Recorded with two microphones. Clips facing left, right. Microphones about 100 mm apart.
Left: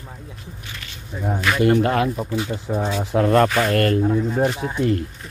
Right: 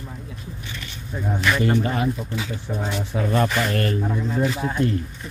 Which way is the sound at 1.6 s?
60° left (ahead or behind).